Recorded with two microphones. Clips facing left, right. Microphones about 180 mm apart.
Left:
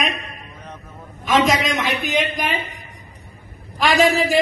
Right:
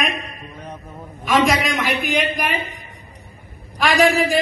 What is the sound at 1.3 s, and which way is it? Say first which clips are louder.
A woman's voice: even; 20° left (ahead or behind).